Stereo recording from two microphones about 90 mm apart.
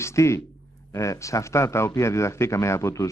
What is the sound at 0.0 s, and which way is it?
Speech, 35° left (ahead or behind).